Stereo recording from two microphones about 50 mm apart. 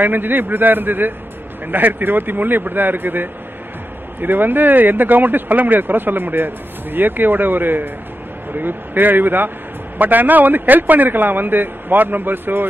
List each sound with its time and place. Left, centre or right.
0.0 s speech: right